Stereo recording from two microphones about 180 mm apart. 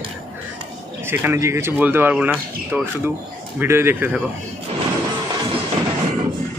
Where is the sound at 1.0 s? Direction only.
15° right (ahead or behind).